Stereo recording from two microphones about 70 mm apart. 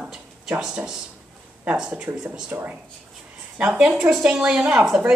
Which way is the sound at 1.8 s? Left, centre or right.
Centre.